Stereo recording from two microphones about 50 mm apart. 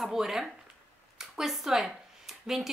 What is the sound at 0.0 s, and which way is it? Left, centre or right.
Speech, centre.